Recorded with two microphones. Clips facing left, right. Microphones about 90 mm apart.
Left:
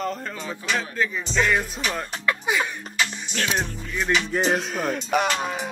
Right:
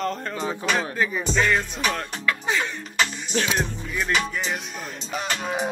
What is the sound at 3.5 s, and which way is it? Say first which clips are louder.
Music: even; centre (ahead or behind).